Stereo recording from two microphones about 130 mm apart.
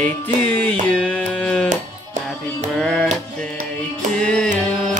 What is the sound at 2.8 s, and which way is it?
Music, centre (ahead or behind).